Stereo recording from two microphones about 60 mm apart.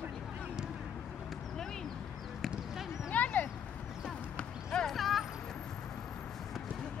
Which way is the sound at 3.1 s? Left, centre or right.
Left.